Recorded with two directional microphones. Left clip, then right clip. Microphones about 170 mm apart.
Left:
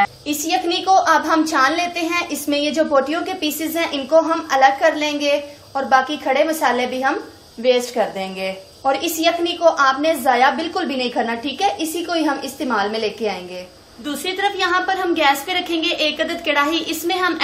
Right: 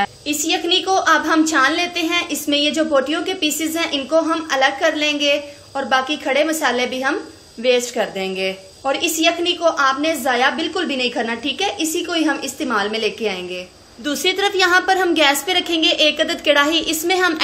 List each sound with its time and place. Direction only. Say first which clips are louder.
0.3 s a woman's voice: right 2 dB; 10° right (ahead or behind)
14.0 s a woman's voice: right 3 dB; 25° right (ahead or behind)